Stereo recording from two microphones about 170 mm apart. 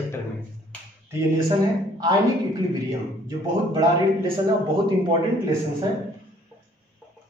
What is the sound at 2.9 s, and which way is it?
Speech, 20° right (ahead or behind).